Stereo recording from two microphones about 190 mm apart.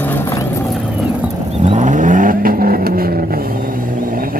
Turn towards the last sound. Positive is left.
turn(degrees=-50)  # may be behind; listen again after turning